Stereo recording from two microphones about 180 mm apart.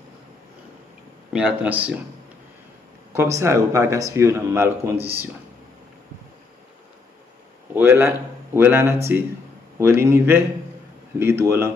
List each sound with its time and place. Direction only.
1.3 s speech: 10° right (ahead or behind)
3.1 s speech: 15° right (ahead or behind)
7.7 s speech: 15° right (ahead or behind)